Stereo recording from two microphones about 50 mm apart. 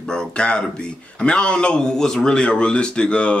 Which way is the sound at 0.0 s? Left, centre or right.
Centre.